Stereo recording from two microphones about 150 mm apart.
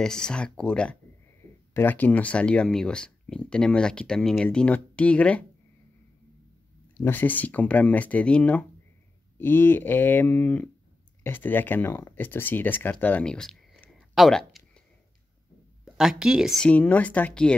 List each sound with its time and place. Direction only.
0.0 s speech: 5° left (ahead or behind)
7.0 s speech: 10° left (ahead or behind)
15.8 s speech: 5° right (ahead or behind)